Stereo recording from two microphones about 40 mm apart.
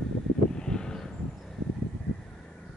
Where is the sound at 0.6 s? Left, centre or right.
Centre.